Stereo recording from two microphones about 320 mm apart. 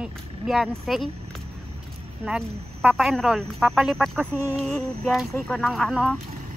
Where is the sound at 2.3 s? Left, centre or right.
Centre.